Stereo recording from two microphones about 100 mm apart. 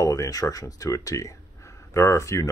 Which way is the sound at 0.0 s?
30° left (ahead or behind).